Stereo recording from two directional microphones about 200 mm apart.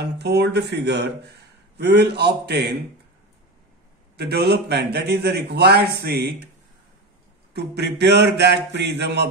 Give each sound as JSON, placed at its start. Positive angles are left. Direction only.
{"t": 0.0, "sound": "a man's voice", "side_deg": -55}
{"t": 4.2, "sound": "a man's voice", "side_deg": -55}
{"t": 7.5, "sound": "a man's voice", "side_deg": -55}